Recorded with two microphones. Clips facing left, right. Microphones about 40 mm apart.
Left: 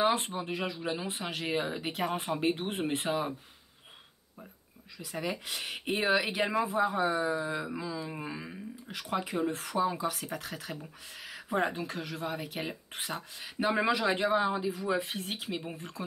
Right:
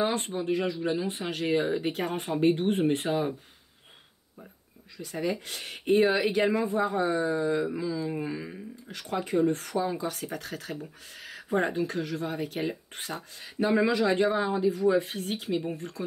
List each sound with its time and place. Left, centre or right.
0.0 s speech: centre
4.9 s speech: centre